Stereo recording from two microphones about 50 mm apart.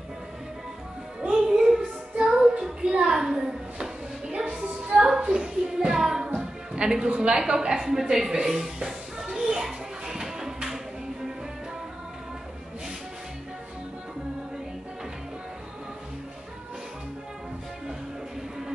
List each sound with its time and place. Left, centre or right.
1.2 s music: centre
1.8 s child singing: centre
5.0 s a sound: centre
5.9 s a woman's voice: centre
9.2 s music: centre